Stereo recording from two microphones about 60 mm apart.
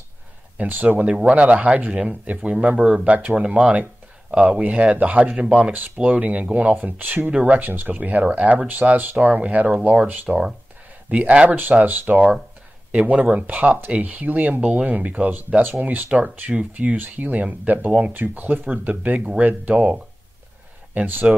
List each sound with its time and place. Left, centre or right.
0.6 s speech: right
0.8 s speech: centre
13.2 s speech: right